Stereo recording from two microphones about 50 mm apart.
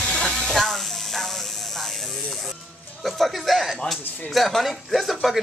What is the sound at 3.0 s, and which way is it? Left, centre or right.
Speech, centre.